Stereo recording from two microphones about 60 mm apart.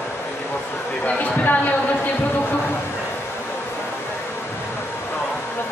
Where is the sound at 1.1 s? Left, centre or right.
Left.